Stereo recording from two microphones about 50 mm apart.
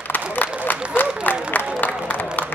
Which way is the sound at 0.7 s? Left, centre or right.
Left.